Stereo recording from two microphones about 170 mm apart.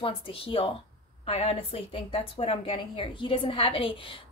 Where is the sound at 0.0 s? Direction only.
30° left (ahead or behind).